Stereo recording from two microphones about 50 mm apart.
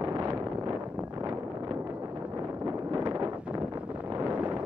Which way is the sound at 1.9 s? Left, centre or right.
Right.